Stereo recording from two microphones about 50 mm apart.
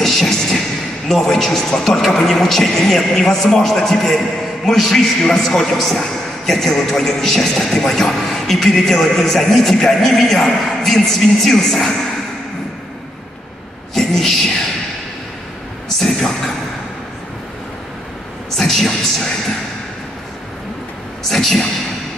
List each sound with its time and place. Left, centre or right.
0.0 s a sound: centre
2.1 s a man's voice: centre
13.9 s a woman's voice: centre
16.0 s a man's voice: centre
18.6 s a man's voice: centre
21.3 s a man's voice: centre